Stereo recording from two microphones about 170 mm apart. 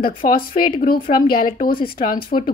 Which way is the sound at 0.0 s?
55° left (ahead or behind).